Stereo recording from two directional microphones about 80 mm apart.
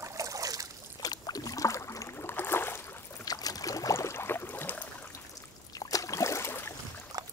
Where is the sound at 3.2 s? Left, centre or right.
Left.